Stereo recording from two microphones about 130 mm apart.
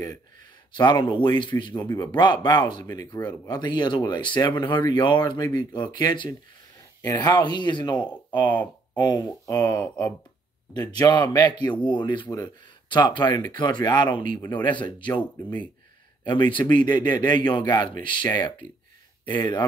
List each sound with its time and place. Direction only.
0.7 s speech: 35° left (ahead or behind)
1.8 s speech: 25° left (ahead or behind)
2.1 s speech: 35° left (ahead or behind)
16.3 s speech: 35° left (ahead or behind)
19.2 s speech: 35° left (ahead or behind)